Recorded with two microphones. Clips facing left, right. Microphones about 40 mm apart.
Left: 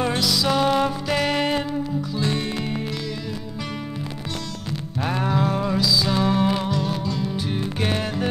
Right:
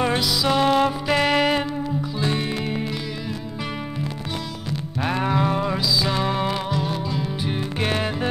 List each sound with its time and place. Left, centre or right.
0.0 s music: centre
5.0 s music: centre